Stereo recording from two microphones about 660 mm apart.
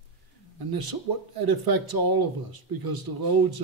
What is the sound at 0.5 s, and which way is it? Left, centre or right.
Speech, right.